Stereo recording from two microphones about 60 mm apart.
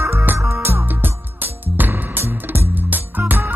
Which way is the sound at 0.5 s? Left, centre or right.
Right.